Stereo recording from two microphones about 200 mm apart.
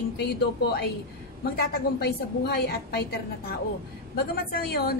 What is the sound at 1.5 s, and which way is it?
A woman's voice, 55° left (ahead or behind).